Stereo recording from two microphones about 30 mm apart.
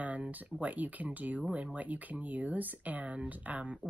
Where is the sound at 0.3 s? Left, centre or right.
Right.